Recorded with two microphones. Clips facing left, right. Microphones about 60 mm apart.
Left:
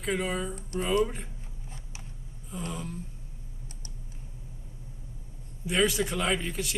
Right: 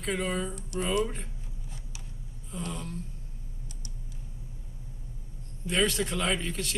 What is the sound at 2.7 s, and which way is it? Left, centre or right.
Speech, centre.